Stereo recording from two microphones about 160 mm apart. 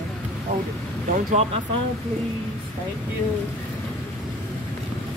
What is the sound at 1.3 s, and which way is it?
Speech, 40° right (ahead or behind).